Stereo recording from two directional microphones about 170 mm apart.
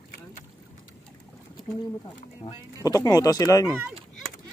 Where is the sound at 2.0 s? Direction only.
25° left (ahead or behind).